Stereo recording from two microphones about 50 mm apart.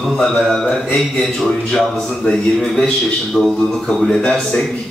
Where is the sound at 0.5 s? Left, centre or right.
Centre.